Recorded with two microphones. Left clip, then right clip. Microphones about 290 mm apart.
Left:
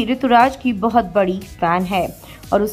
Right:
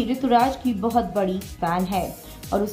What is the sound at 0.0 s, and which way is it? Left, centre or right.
A woman's voice, centre.